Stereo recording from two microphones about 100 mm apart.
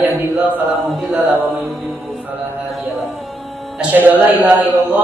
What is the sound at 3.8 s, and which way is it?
Speech, 15° right (ahead or behind).